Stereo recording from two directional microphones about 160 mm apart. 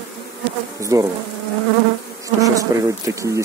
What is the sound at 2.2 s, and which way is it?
Speech, 20° right (ahead or behind).